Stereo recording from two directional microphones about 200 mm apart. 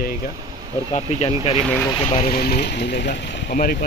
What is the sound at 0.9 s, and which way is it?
Speech, 30° left (ahead or behind).